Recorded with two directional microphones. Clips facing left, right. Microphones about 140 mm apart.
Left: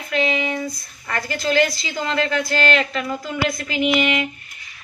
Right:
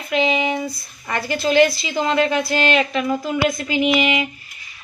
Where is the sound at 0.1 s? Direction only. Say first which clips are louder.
Right 3 dB; 20° right (ahead or behind).